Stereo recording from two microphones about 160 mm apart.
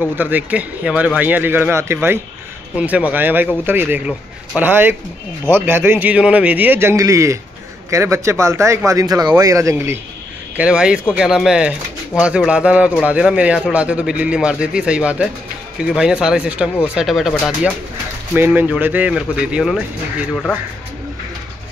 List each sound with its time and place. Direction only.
0.1 s a man's voice: 10° right (ahead or behind)
10.6 s a man's voice: 5° right (ahead or behind)
18.3 s a man's voice: 10° right (ahead or behind)